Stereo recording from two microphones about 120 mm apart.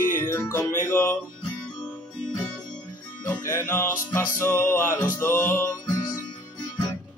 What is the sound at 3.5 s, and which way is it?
Music, 20° left (ahead or behind).